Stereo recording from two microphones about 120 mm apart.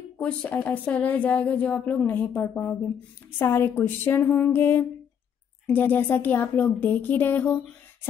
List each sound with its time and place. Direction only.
0.2 s a woman's voice: 10° left (ahead or behind)
3.3 s a sound: 20° left (ahead or behind)
5.7 s a woman's voice: 15° left (ahead or behind)